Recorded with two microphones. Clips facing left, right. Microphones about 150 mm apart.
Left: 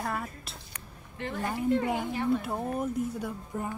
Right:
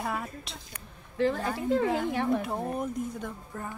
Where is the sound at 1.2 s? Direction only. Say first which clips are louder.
Right 7 dB; 90° right.